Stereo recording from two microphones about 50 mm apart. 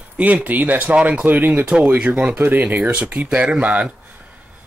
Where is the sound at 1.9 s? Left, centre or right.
Right.